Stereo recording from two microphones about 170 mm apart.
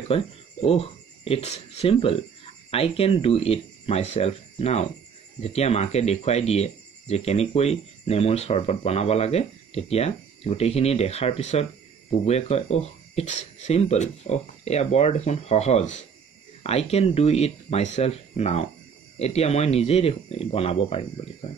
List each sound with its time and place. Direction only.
0.1 s speech: 35° left (ahead or behind)